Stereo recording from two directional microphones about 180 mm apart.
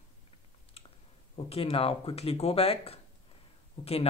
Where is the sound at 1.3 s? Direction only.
35° left (ahead or behind).